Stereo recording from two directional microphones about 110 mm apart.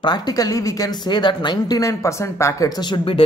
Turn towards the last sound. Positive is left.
turn(degrees=50)  # may be behind; listen again after turning